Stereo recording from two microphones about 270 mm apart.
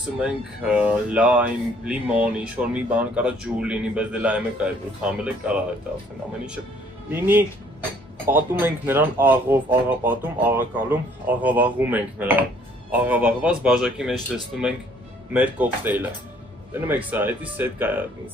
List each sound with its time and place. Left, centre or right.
0.2 s speech: centre
7.1 s speech: centre